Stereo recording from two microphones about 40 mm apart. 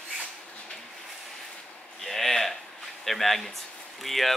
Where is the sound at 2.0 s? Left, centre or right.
Centre.